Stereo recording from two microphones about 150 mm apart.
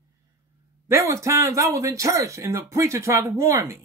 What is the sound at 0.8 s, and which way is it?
Speech, 20° right (ahead or behind).